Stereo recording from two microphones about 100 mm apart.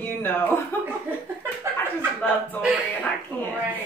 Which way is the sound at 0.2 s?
20° left (ahead or behind).